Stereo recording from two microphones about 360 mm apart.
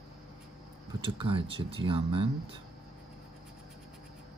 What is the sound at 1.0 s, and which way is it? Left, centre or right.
Speech, centre.